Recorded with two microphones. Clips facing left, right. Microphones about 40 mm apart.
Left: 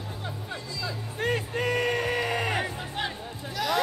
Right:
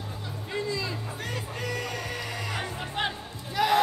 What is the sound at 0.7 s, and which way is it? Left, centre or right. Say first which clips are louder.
Music: right 2 dB; right.